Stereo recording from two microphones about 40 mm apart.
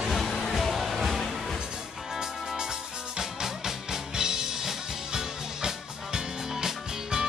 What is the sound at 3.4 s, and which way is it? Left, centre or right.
Music, centre.